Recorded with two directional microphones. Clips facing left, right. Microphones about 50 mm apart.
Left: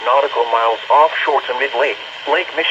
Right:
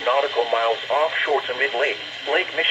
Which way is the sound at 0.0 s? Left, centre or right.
Left.